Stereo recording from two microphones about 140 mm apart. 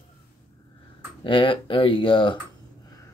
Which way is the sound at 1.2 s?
35° left (ahead or behind).